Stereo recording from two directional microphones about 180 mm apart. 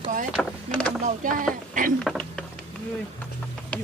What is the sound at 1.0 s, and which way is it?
Speech, 45° right (ahead or behind).